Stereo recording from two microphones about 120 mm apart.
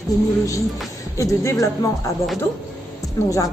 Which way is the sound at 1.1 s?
25° left (ahead or behind).